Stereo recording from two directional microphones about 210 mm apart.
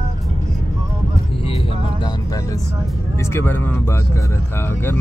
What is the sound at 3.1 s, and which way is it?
Vehicle, 10° left (ahead or behind).